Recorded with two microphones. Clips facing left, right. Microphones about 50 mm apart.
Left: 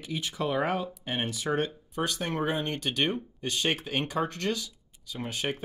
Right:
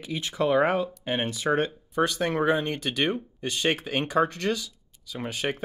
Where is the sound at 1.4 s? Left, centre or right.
Right.